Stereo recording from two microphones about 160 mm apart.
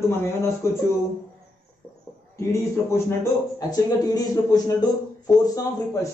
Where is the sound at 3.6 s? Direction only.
25° left (ahead or behind).